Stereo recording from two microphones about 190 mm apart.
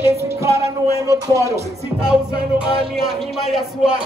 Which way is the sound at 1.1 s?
15° right (ahead or behind).